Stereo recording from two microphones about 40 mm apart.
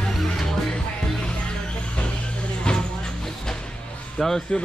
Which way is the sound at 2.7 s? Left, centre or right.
Left.